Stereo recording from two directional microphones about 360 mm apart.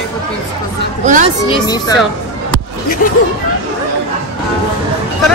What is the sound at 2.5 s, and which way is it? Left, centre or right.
Music, left.